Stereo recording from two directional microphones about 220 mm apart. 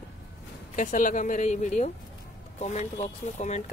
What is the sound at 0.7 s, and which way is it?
Speech, 35° left (ahead or behind).